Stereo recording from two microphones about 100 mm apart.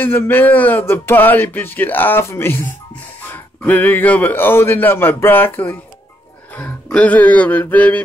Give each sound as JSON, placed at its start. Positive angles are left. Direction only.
{"t": 0.0, "sound": "speech", "side_deg": 20}
{"t": 6.5, "sound": "music", "side_deg": 15}